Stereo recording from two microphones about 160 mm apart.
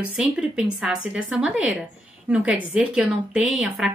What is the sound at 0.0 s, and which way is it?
A woman's voice, 5° right (ahead or behind).